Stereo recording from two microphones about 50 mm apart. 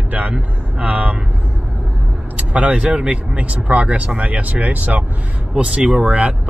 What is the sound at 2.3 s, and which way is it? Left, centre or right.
Speech, right.